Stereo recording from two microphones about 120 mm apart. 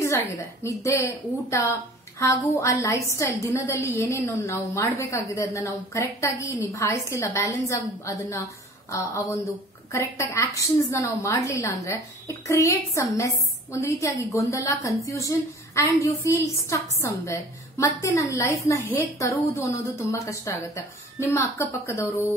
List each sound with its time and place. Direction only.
0.7 s a woman's voice: 25° left (ahead or behind)